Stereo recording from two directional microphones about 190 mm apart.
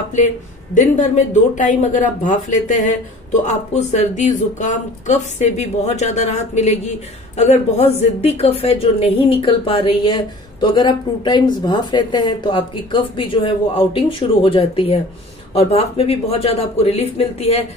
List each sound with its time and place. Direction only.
0.7 s a woman's voice: 40° left (ahead or behind)